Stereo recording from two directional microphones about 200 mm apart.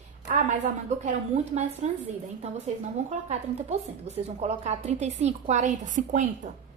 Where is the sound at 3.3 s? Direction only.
35° right (ahead or behind).